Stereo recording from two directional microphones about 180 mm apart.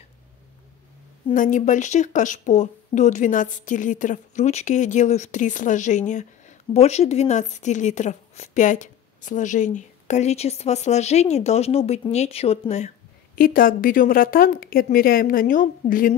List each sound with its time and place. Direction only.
1.3 s speech: 45° left (ahead or behind)
13.4 s a woman's voice: 50° left (ahead or behind)